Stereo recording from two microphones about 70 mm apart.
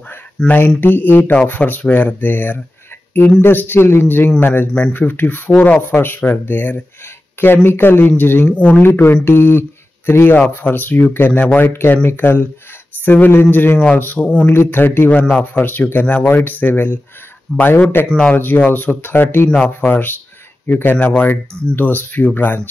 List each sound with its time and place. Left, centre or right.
0.5 s speech: left
8.5 s speech: centre
18.0 s speech: centre
18.3 s speech: left